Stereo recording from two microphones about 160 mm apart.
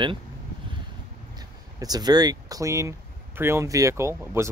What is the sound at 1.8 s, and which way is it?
Speech, 25° right (ahead or behind).